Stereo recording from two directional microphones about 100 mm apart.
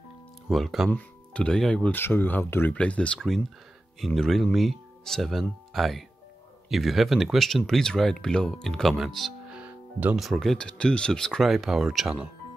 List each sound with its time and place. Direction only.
0.5 s speech: centre (ahead or behind)
0.8 s speech: 15° left (ahead or behind)
1.9 s speech: 20° left (ahead or behind); by 9.3 s centre (ahead or behind)
9.5 s music: 15° right (ahead or behind)
10.1 s speech: centre (ahead or behind)